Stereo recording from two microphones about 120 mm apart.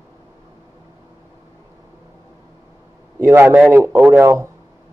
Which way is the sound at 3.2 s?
20° right (ahead or behind).